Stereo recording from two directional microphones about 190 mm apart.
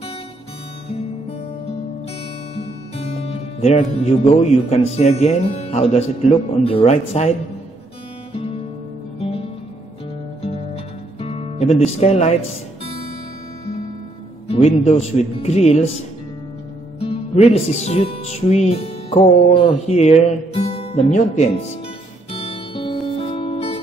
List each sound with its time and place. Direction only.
2.5 s music: 30° left (ahead or behind)
3.9 s speech: 35° left (ahead or behind)
11.1 s speech: 30° left (ahead or behind)
14.5 s speech: 35° left (ahead or behind)
17.0 s music: 35° left (ahead or behind)